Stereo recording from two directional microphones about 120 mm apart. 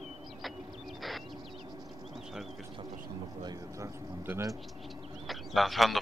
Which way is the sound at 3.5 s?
25° right (ahead or behind).